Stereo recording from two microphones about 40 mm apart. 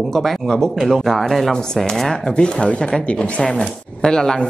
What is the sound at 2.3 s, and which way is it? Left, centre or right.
A woman's voice, left.